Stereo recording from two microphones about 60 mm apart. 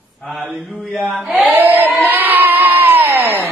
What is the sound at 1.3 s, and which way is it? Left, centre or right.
Speech, right.